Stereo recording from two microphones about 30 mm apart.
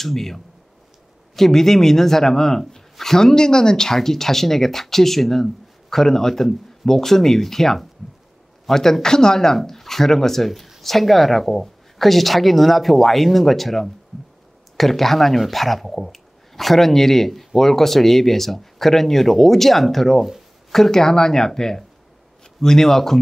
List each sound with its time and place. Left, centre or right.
0.0 s speech: centre
20.2 s speech: centre
20.7 s speech: centre